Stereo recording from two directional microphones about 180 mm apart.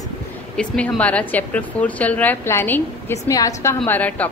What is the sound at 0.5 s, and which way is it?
A woman's voice, 5° left (ahead or behind).